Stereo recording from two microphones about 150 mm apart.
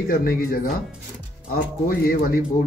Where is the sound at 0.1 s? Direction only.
75° left (ahead or behind).